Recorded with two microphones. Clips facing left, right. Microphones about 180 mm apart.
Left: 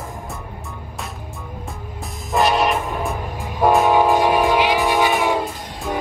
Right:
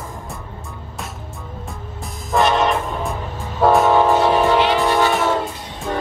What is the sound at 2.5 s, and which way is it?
Train, 20° left (ahead or behind).